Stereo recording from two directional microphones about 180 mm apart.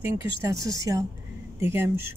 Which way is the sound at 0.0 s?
15° right (ahead or behind).